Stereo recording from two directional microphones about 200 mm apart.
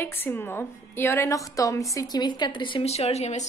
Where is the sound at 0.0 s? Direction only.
10° left (ahead or behind).